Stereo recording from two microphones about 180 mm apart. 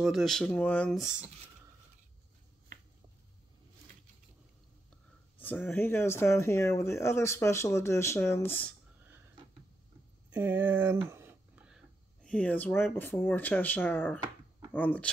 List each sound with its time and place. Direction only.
0.0 s speech: centre (ahead or behind)
5.4 s speech: 10° left (ahead or behind)
10.3 s speech: 10° right (ahead or behind); by 15.0 s 10° left (ahead or behind)